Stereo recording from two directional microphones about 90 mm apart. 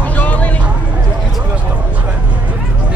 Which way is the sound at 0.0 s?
15° left (ahead or behind).